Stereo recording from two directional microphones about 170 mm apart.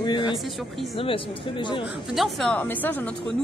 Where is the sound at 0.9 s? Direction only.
30° left (ahead or behind).